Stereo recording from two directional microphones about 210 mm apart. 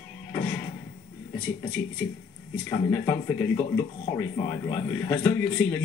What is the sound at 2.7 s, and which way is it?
Speech, 10° left (ahead or behind).